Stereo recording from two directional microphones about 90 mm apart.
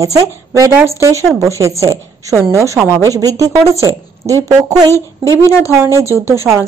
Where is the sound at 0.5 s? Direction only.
35° right (ahead or behind).